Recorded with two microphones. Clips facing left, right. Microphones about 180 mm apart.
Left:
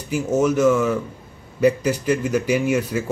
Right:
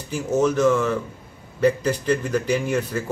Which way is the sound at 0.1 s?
10° left (ahead or behind).